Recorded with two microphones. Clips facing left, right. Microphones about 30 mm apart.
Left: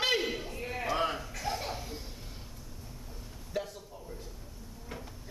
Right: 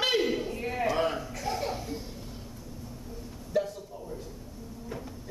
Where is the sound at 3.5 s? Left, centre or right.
Centre.